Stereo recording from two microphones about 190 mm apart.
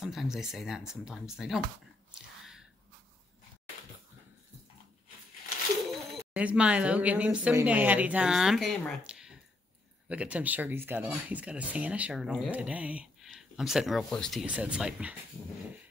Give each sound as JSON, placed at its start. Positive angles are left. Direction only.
{"t": 0.0, "sound": "speech", "side_deg": 0}
{"t": 5.9, "sound": "speech", "side_deg": -5}